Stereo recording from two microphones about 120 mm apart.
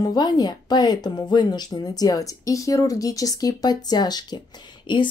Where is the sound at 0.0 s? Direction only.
35° left (ahead or behind).